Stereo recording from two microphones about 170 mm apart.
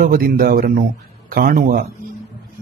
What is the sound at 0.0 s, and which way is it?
Speech, 55° right (ahead or behind).